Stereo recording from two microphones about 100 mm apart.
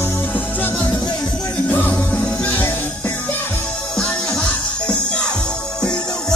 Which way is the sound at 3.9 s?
5° left (ahead or behind).